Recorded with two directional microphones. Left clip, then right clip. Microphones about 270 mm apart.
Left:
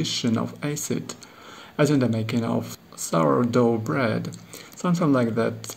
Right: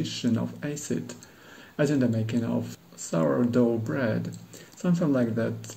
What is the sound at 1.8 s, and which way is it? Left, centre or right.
Speech, left.